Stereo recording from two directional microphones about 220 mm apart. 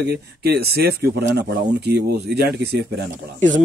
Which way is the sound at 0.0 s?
45° right (ahead or behind).